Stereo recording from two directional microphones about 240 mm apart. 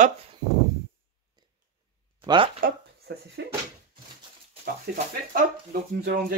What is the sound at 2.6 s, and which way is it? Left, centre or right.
Speech, right.